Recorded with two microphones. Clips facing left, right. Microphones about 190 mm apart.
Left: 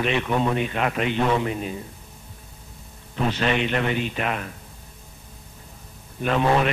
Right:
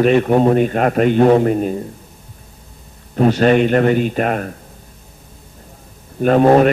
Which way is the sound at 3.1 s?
45° right (ahead or behind).